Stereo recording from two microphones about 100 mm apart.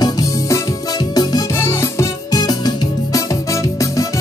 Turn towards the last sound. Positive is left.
turn(degrees=35)  # may be behind; listen again after turning